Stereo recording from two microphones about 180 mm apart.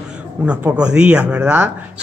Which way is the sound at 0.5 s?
5° right (ahead or behind).